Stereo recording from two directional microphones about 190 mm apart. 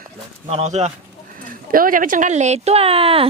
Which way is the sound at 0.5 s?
35° right (ahead or behind).